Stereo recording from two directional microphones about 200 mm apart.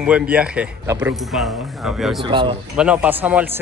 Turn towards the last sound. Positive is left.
turn(degrees=-10)  # may be behind; listen again after turning